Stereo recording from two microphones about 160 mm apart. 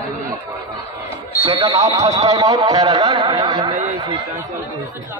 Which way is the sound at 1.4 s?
35° right (ahead or behind).